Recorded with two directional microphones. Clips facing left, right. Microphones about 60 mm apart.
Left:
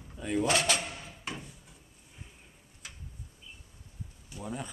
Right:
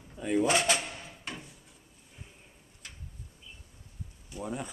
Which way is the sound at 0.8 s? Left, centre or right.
Centre.